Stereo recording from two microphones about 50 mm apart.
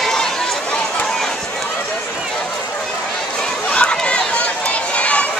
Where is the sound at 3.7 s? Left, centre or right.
Left.